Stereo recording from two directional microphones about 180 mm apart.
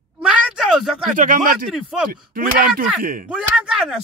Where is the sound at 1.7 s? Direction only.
5° right (ahead or behind).